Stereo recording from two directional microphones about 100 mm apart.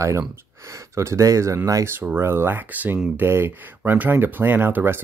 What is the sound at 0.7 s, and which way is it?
Speech, 30° right (ahead or behind).